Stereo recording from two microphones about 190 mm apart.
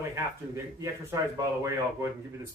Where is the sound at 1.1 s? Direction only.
15° right (ahead or behind).